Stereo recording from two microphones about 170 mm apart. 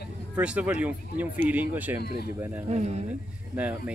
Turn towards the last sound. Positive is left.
turn(degrees=-10)  # may be behind; listen again after turning